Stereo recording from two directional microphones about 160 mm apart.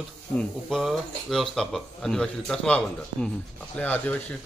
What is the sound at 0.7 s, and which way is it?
Speech, centre (ahead or behind).